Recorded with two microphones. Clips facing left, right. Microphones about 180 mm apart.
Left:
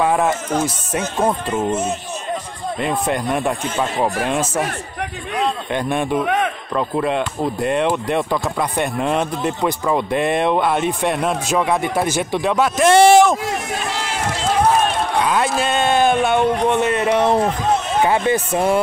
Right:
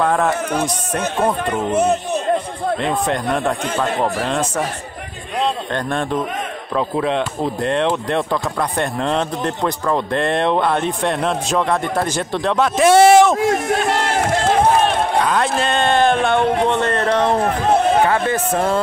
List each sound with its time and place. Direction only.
0.0 s speech: 10° left (ahead or behind)
1.7 s speech: 60° right (ahead or behind)
2.8 s speech: 5° left (ahead or behind)
6.2 s a sound: 70° left (ahead or behind)
7.0 s speech: 5° left (ahead or behind)
13.5 s run: 55° right (ahead or behind)
15.2 s speech: 5° left (ahead or behind)
17.5 s run: 60° right (ahead or behind)
18.0 s speech: 15° left (ahead or behind)